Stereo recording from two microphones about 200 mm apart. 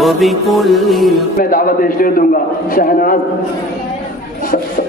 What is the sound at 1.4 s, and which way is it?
A man's voice, 45° left (ahead or behind).